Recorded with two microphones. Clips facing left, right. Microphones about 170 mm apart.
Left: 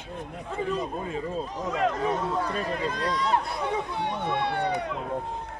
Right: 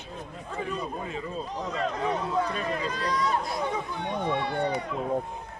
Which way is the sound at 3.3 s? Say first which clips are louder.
Left 2 dB; 65° left (ahead or behind).